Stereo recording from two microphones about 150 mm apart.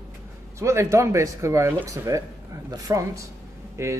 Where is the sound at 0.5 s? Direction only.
20° right (ahead or behind).